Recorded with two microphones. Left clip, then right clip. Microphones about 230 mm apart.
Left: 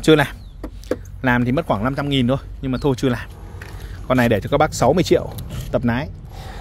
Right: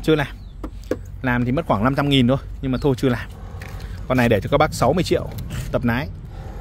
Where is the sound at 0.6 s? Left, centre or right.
Centre.